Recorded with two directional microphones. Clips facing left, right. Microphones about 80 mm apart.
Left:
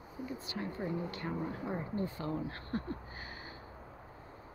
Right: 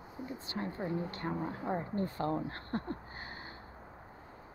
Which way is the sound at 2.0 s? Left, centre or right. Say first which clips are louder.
Right 2 dB; right.